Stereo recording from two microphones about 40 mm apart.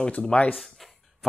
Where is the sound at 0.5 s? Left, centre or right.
Centre.